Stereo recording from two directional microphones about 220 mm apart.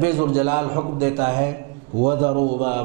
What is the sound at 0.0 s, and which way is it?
A man's voice, 10° right (ahead or behind).